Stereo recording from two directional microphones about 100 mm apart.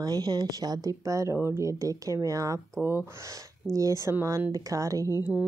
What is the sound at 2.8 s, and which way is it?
Speech, 20° right (ahead or behind).